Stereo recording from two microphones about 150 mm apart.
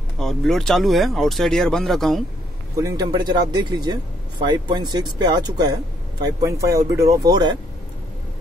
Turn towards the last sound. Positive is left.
turn(degrees=-25)  # may be behind; listen again after turning